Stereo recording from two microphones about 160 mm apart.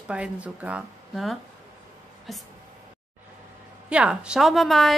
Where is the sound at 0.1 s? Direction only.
10° right (ahead or behind).